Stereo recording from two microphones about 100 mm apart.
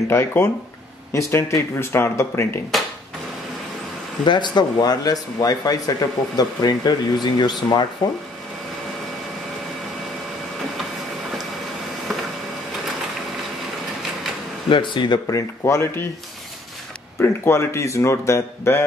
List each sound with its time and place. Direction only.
0.1 s speech: 25° left (ahead or behind)
2.7 s a sound: centre (ahead or behind)
4.3 s speech: 50° left (ahead or behind)
14.7 s speech: 50° left (ahead or behind)
15.2 s speech: 30° left (ahead or behind)
17.2 s speech: 25° left (ahead or behind)